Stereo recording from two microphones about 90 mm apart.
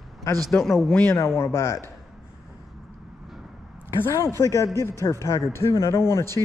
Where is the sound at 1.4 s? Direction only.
30° left (ahead or behind).